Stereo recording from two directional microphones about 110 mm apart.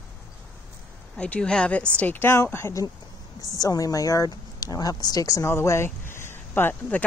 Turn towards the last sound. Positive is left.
turn(degrees=20)  # may be behind; listen again after turning